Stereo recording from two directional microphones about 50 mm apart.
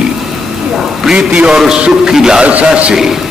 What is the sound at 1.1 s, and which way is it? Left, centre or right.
A man's voice, centre.